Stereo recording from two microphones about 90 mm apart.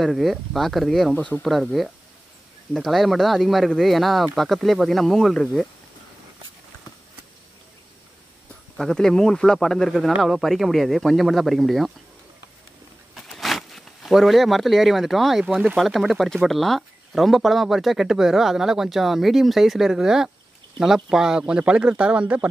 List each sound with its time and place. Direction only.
0.0 s speech: centre (ahead or behind)
1.1 s speech: 20° left (ahead or behind)
1.4 s speech: centre (ahead or behind)
8.7 s speech: 5° left (ahead or behind)
13.1 s a sound: centre (ahead or behind)
15.8 s speech: centre (ahead or behind)